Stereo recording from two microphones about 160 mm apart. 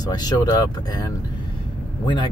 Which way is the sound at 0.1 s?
25° left (ahead or behind).